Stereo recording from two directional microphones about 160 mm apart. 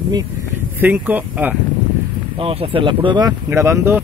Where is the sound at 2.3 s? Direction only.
35° right (ahead or behind); by 4.0 s 15° right (ahead or behind).